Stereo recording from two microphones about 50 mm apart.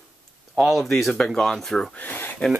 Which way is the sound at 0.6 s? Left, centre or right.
Centre.